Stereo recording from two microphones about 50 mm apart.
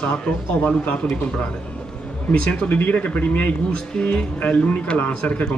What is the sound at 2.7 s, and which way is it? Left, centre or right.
Speech, left.